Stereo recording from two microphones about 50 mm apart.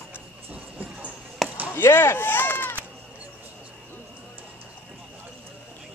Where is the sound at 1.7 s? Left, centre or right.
Left.